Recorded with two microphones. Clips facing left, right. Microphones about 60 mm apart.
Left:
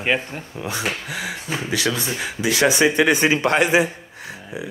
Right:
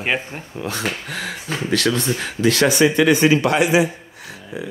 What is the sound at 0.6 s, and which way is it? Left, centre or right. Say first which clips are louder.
Speech: right 1 dB; centre.